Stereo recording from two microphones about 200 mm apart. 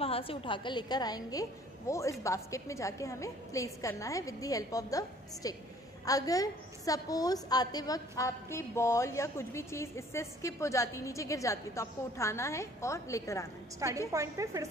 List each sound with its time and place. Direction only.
0.0 s a woman's voice: 30° left (ahead or behind)
13.8 s a woman's voice: 15° right (ahead or behind)